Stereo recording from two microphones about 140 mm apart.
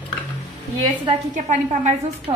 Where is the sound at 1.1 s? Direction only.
60° right (ahead or behind).